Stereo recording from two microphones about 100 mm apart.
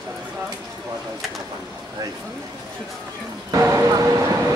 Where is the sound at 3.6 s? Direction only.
30° right (ahead or behind).